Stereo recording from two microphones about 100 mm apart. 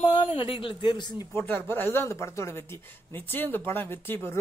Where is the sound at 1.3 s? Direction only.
20° left (ahead or behind).